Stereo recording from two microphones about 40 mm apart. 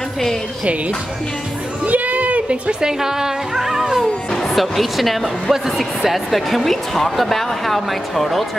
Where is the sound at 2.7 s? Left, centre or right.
Centre.